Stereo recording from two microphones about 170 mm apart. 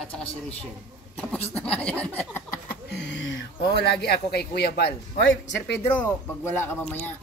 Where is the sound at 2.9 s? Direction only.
90° left.